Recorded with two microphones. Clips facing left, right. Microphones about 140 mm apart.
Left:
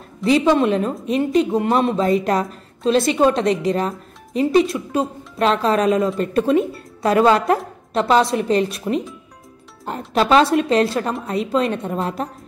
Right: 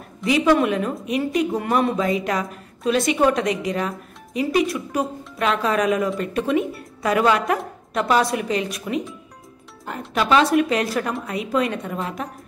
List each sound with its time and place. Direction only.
0.2 s a woman's voice: 30° left (ahead or behind)